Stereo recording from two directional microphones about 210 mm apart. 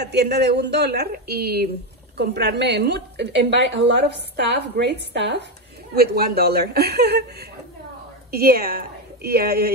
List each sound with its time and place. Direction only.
0.0 s a woman's voice: 50° right (ahead or behind)